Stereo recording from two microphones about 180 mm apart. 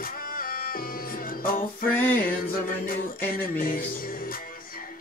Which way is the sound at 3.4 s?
50° left (ahead or behind).